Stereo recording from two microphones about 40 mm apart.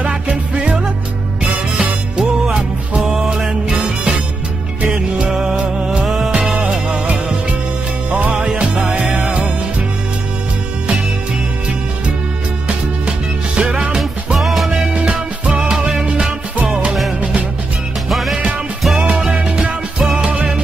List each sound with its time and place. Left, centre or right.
0.0 s music: right
1.8 s music: centre
8.1 s music: right
8.4 s music: right
13.6 s music: right
14.4 s music: centre
15.0 s music: right
15.7 s music: centre
16.5 s music: right
18.1 s music: centre
18.9 s music: right